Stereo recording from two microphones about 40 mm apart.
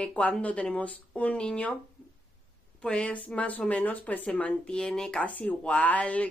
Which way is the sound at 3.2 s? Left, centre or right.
Left.